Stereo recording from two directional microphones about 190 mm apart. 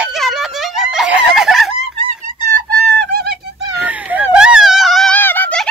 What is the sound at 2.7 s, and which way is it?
Bird, 55° right (ahead or behind).